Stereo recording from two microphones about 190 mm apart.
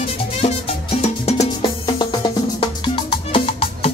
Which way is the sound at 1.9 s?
25° left (ahead or behind).